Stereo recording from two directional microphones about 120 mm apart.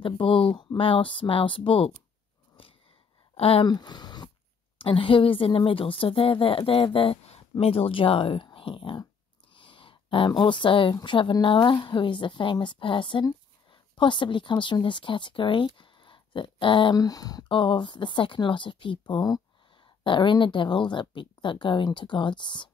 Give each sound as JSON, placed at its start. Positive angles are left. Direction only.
{"t": 0.0, "sound": "speech", "side_deg": 45}
{"t": 3.3, "sound": "speech", "side_deg": 55}
{"t": 3.6, "sound": "speech", "side_deg": 35}
{"t": 4.7, "sound": "a woman's voice", "side_deg": 50}
{"t": 17.0, "sound": "speech", "side_deg": 30}